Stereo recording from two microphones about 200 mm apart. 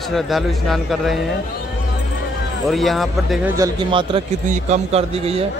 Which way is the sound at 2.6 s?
Centre (ahead or behind).